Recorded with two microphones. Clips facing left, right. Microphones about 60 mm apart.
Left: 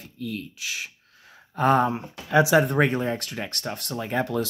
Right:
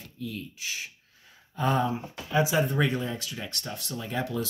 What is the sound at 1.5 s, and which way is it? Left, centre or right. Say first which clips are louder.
Speech: left 6 dB; left.